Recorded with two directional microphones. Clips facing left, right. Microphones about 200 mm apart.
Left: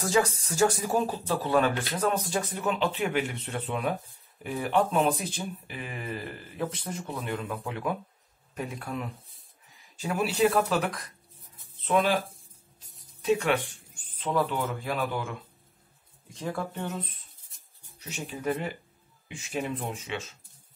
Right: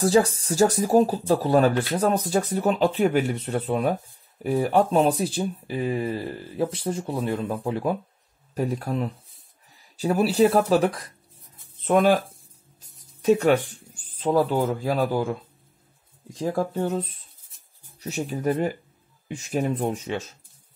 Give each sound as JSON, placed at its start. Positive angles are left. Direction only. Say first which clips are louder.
{"t": 0.0, "sound": "speech", "louder": "right 6 dB", "side_deg": -35}
{"t": 13.2, "sound": "speech", "louder": "right 7 dB", "side_deg": -40}
{"t": 16.3, "sound": "speech", "louder": "right 8 dB", "side_deg": -35}